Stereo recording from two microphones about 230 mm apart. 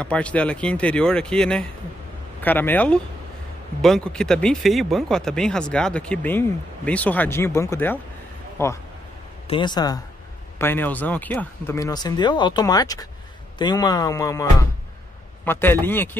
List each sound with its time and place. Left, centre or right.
0.0 s speech: centre